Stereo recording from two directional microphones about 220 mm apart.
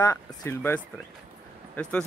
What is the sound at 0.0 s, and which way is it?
Speech, 15° left (ahead or behind).